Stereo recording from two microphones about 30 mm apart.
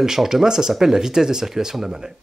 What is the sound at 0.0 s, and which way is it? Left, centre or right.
Speech, centre.